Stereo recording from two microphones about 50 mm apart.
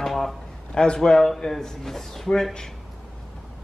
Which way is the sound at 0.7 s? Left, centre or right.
Centre.